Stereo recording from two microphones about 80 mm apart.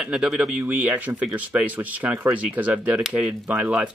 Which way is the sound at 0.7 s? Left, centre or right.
Centre.